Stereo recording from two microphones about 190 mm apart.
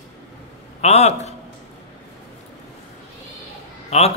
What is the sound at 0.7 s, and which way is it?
Speech, 35° left (ahead or behind).